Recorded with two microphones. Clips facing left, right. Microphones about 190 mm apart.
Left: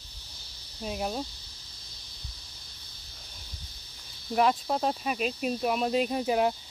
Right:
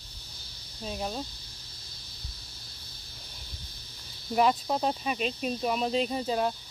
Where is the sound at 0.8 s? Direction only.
10° left (ahead or behind).